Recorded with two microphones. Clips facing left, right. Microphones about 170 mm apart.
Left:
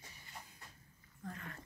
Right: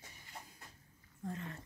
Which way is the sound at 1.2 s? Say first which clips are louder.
Right 5 dB; 25° right (ahead or behind).